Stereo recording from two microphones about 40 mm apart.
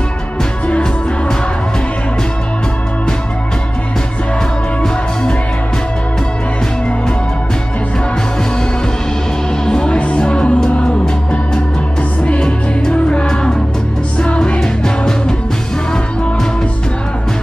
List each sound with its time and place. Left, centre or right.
9.7 s music: centre
12.3 s music: left
14.6 s music: centre